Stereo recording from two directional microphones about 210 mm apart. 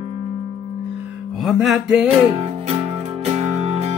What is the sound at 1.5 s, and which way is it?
Speech, centre (ahead or behind).